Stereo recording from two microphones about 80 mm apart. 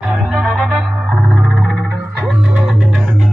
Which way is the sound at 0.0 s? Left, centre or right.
Centre.